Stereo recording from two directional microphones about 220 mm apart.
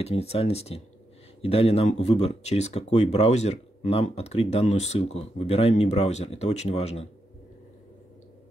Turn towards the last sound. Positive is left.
turn(degrees=30)  # may be behind; listen again after turning